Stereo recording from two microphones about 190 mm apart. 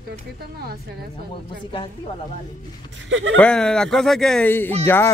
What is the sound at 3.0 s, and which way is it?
Speech, 75° right (ahead or behind).